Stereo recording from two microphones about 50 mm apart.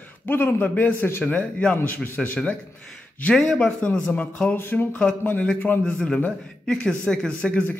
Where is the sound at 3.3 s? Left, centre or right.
Centre.